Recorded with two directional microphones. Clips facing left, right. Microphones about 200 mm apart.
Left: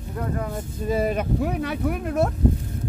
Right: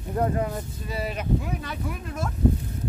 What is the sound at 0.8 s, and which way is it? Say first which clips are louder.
Speech: left 7 dB; 50° left (ahead or behind).